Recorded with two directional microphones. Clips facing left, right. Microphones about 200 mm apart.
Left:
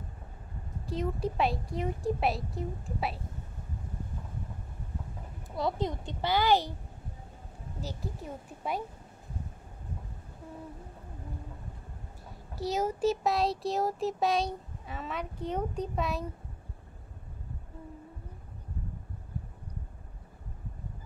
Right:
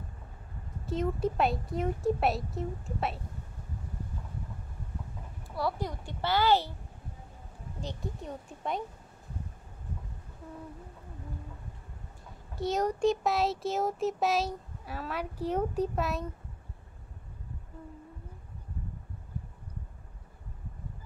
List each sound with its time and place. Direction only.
0.8 s speech: centre (ahead or behind)
5.6 s a woman's voice: 20° left (ahead or behind)
7.8 s speech: 5° left (ahead or behind)
12.5 s speech: centre (ahead or behind)